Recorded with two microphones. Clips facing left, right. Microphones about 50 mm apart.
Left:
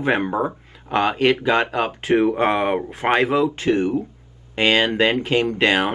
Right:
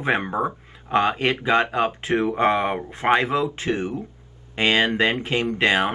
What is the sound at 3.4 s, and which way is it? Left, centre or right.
Speech, right.